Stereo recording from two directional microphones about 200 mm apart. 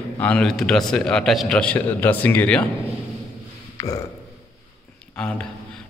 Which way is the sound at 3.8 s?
15° left (ahead or behind).